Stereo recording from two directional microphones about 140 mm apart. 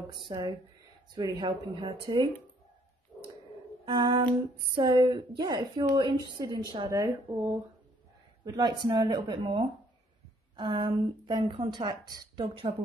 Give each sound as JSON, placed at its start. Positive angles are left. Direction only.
{"t": 0.3, "sound": "speech", "side_deg": -30}
{"t": 3.1, "sound": "a sound", "side_deg": 10}
{"t": 3.8, "sound": "speech", "side_deg": -35}
{"t": 8.5, "sound": "speech", "side_deg": -30}